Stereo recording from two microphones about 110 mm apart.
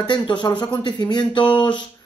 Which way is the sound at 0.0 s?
45° left (ahead or behind).